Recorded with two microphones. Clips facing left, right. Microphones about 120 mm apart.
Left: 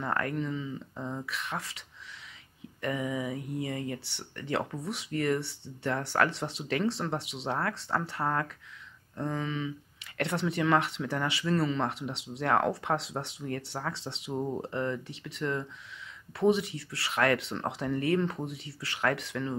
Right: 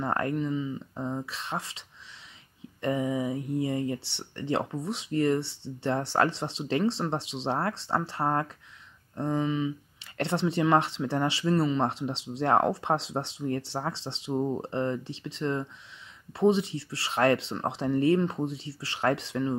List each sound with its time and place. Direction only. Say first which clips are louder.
0.0 s speech: right 3 dB; 25° right (ahead or behind)
2.8 s speech: right 4 dB; 30° right (ahead or behind)